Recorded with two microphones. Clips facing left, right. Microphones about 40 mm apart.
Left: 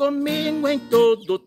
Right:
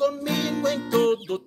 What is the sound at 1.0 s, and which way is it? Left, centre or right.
Music, left.